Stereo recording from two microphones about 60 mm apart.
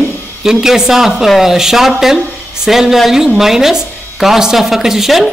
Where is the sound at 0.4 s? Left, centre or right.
Centre.